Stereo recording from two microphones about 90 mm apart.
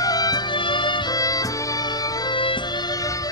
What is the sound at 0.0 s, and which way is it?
Music, 45° left (ahead or behind).